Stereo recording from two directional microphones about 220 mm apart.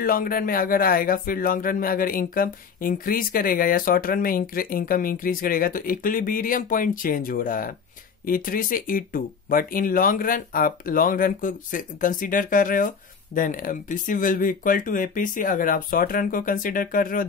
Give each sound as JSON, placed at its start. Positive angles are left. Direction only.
{"t": 0.0, "sound": "speech", "side_deg": 40}